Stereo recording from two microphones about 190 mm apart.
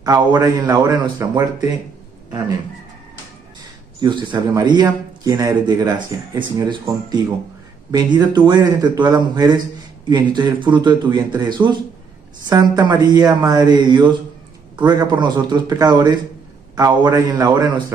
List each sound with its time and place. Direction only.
0.0 s speech: 20° right (ahead or behind)
4.0 s speech: 25° right (ahead or behind)